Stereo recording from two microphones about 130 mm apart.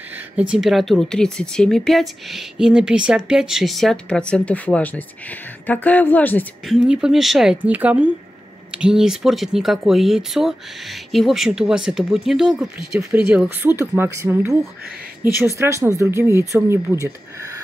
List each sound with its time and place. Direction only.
0.4 s speech: 5° right (ahead or behind); by 6.4 s 15° left (ahead or behind)
6.7 s speech: 5° right (ahead or behind); by 17.1 s 20° right (ahead or behind)